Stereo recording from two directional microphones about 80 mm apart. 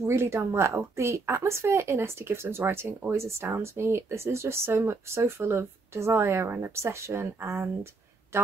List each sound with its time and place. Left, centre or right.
0.0 s speech: right